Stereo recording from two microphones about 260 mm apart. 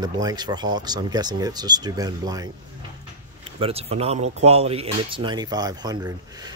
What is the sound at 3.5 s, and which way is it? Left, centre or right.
Speech, right.